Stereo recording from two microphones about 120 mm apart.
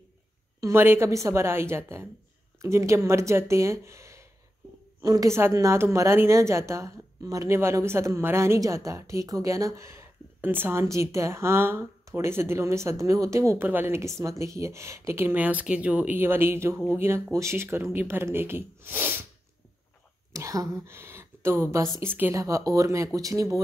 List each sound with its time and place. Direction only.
0.6 s a woman's voice: 20° right (ahead or behind)
20.3 s a woman's voice: 25° right (ahead or behind)
22.4 s a woman's voice: 30° right (ahead or behind)